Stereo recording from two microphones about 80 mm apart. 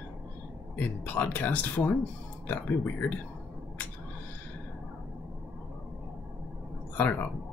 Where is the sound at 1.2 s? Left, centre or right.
Left.